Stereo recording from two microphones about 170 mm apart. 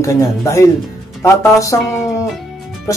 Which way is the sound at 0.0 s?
15° left (ahead or behind).